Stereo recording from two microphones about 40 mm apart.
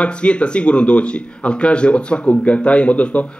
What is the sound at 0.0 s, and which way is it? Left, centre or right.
A man's voice, left.